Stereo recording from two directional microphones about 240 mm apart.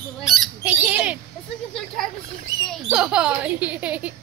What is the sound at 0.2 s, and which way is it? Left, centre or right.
Goose, centre.